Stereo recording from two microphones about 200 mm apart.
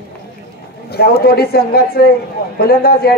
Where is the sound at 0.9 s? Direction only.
50° left (ahead or behind).